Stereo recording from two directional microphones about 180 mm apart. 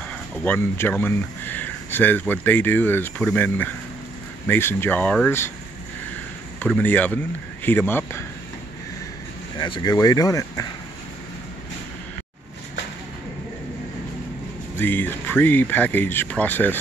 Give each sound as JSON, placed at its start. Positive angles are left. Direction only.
{"t": 0.4, "sound": "speech", "side_deg": 10}
{"t": 6.6, "sound": "speech", "side_deg": 10}
{"t": 9.6, "sound": "speech", "side_deg": 25}
{"t": 14.8, "sound": "speech", "side_deg": 10}